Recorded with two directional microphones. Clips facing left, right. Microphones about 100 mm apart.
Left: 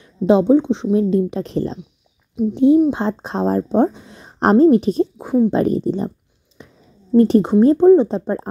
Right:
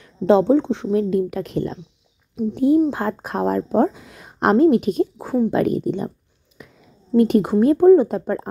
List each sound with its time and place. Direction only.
0.0 s a woman's voice: 15° left (ahead or behind)
5.2 s speech: 10° left (ahead or behind)
5.5 s speech: 30° left (ahead or behind)
6.6 s a sound: 30° left (ahead or behind)
7.2 s speech: 30° left (ahead or behind)
7.6 s a woman's voice: 20° left (ahead or behind)